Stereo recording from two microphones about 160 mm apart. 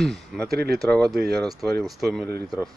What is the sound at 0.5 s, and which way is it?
Speech, 80° right.